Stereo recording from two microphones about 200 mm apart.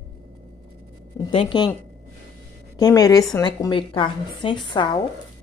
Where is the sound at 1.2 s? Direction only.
25° left (ahead or behind).